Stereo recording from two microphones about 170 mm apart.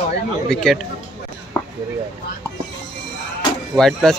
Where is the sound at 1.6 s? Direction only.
15° left (ahead or behind).